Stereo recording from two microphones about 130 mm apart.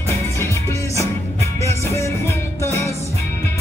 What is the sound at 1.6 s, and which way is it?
Music, 20° left (ahead or behind).